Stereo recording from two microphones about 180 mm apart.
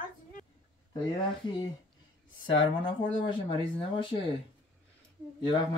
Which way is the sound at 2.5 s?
25° left (ahead or behind).